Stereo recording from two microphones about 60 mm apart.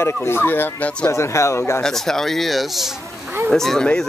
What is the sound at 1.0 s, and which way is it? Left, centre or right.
Speech, left.